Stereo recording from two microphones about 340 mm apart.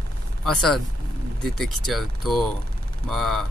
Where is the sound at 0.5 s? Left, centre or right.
Centre.